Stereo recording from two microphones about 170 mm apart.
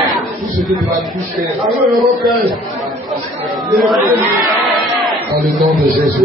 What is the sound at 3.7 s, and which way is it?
Speech, centre (ahead or behind).